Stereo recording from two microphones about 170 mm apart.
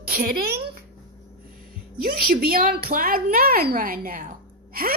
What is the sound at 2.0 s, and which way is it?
A woman's voice, 60° right (ahead or behind).